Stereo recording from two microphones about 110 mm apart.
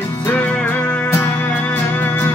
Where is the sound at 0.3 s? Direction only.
10° left (ahead or behind).